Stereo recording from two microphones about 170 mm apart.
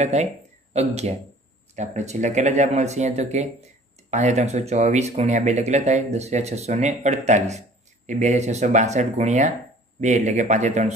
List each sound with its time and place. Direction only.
0.0 s speech: 40° right (ahead or behind)